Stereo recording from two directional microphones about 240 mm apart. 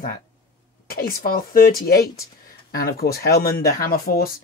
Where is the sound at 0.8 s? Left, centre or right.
Left.